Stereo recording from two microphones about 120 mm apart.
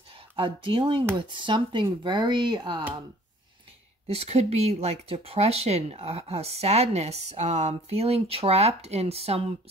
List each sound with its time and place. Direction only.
0.4 s speech: 45° right (ahead or behind)
4.1 s speech: 60° right (ahead or behind)